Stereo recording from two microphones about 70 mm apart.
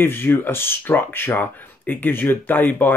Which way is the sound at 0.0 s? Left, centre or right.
Left.